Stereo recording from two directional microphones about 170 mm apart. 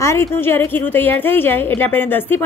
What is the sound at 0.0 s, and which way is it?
A woman's voice, 15° left (ahead or behind).